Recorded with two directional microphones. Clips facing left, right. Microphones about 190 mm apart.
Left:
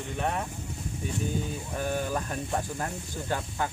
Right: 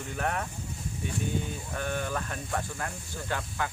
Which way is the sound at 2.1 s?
25° left (ahead or behind).